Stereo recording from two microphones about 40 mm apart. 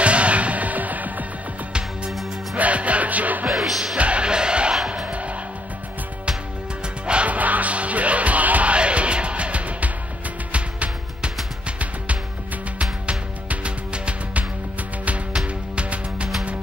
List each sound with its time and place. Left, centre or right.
0.0 s music: right
1.7 s music: right
2.5 s music: right
3.4 s music: centre
3.9 s music: right
5.0 s music: right
7.2 s music: right
8.7 s music: right
15.4 s music: right